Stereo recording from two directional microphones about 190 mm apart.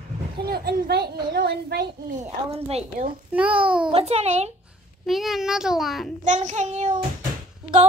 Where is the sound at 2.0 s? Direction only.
40° right (ahead or behind).